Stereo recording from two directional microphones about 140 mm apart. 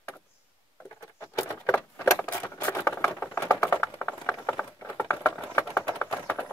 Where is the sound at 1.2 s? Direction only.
20° left (ahead or behind).